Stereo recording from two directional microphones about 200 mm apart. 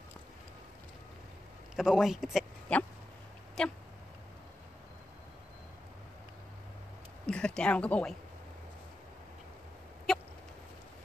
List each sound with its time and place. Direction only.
1.8 s a woman's voice: centre (ahead or behind)
7.2 s a woman's voice: 5° left (ahead or behind)
10.1 s chicken: centre (ahead or behind)